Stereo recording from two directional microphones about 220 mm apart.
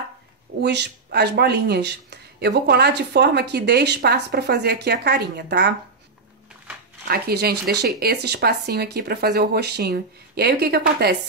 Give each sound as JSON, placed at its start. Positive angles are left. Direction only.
{"t": 0.6, "sound": "speech", "side_deg": -50}
{"t": 7.1, "sound": "speech", "side_deg": -45}